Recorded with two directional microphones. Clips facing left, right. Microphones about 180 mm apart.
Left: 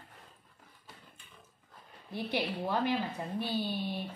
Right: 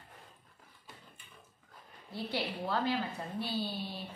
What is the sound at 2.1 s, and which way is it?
A woman's voice, 15° left (ahead or behind).